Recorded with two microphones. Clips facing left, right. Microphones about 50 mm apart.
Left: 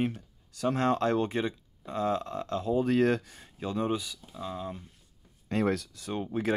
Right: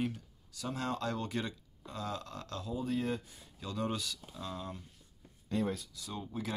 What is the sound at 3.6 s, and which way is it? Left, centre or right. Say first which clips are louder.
Speech: left 7 dB; left.